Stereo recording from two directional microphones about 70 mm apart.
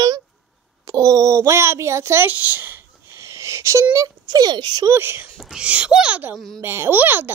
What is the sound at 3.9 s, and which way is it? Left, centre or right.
Speech, right.